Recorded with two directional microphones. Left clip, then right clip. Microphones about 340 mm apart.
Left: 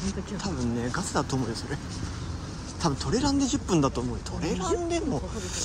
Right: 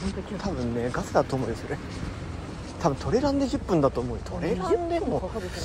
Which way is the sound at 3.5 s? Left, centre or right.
Centre.